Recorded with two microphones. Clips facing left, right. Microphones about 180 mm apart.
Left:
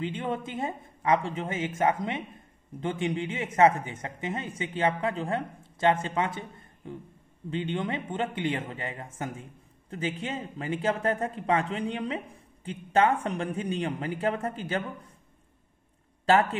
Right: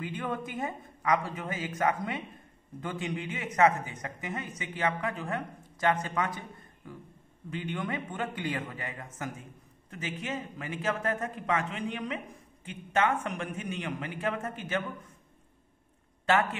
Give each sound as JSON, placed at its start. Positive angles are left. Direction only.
{"t": 0.0, "sound": "speech", "side_deg": 25}
{"t": 7.4, "sound": "a man's voice", "side_deg": 25}